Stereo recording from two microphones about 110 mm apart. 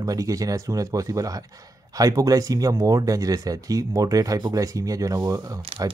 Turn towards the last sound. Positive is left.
turn(degrees=-30)  # may be behind; listen again after turning